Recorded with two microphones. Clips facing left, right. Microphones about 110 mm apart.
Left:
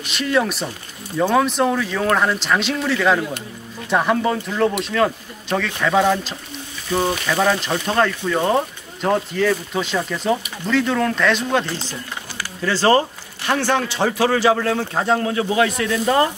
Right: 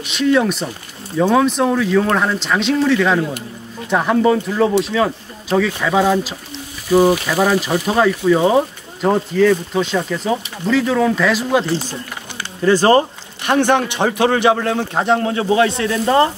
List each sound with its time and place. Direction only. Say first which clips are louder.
0.0 s speech: right 5 dB; centre (ahead or behind)
11.7 s speech: right 6 dB; 25° right (ahead or behind)